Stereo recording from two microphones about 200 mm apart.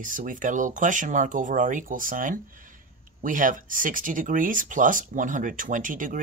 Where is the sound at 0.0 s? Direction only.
40° right (ahead or behind).